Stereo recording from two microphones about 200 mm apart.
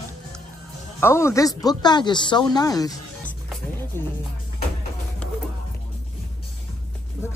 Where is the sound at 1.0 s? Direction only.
15° left (ahead or behind).